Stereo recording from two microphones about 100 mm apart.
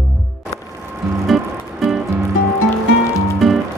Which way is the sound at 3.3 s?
Centre (ahead or behind).